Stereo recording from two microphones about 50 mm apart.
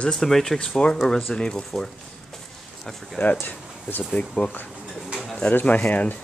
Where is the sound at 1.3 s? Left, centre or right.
Centre.